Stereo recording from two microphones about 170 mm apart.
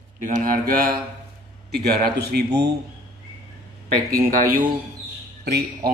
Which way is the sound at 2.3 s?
80° right.